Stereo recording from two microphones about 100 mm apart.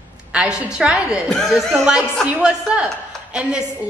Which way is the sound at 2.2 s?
10° right (ahead or behind).